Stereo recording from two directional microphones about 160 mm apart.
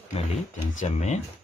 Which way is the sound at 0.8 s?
45° left (ahead or behind).